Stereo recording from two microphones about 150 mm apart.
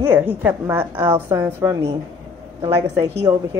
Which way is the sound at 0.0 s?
15° right (ahead or behind).